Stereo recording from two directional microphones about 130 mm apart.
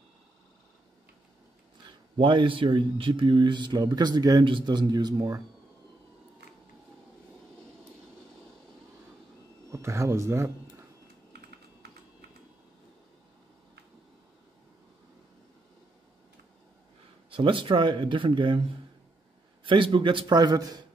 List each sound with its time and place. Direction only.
1.9 s speech: 35° right (ahead or behind)
9.7 s speech: 20° right (ahead or behind)
17.3 s speech: 40° right (ahead or behind)
19.6 s speech: 40° right (ahead or behind)